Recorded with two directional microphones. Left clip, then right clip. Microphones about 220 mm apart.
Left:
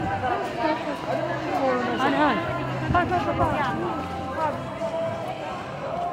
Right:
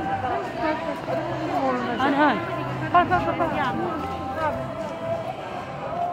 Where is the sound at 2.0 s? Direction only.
25° right (ahead or behind).